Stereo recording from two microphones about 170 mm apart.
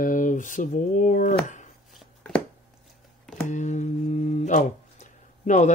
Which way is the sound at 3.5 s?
45° left (ahead or behind).